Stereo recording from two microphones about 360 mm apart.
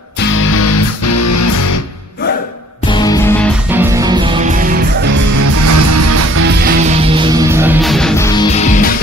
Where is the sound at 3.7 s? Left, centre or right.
Centre.